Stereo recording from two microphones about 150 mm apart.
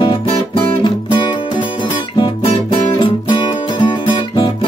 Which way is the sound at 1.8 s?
30° left (ahead or behind).